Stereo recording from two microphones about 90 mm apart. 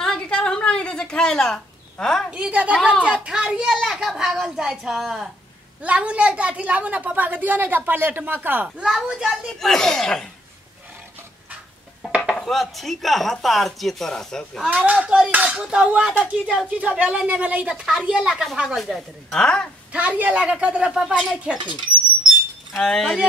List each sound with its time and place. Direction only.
0.0 s a sound: 10° left (ahead or behind)
2.3 s a woman's voice: 15° right (ahead or behind)
5.8 s a woman's voice: 15° right (ahead or behind)
8.6 s a woman's voice: 5° right (ahead or behind)
9.6 s a woman's voice: 5° left (ahead or behind)
12.3 s a woman's voice: centre (ahead or behind)
14.7 s a woman's voice: 15° right (ahead or behind); by 19.7 s 10° left (ahead or behind)
19.9 s a woman's voice: 15° right (ahead or behind)
21.5 s speech: 60° right (ahead or behind)
22.8 s a woman's voice: 5° left (ahead or behind)